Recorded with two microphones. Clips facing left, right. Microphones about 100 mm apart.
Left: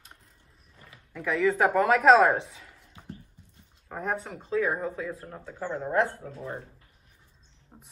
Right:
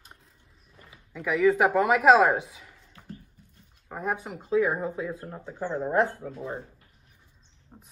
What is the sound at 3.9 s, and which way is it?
Speech, 5° right (ahead or behind).